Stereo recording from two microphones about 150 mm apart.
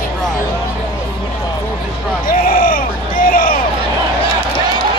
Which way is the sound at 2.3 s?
70° left (ahead or behind).